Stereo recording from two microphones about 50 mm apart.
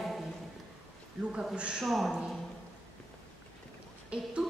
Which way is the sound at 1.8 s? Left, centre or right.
Centre.